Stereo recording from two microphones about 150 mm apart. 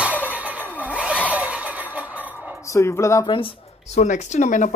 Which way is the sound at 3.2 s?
35° left (ahead or behind).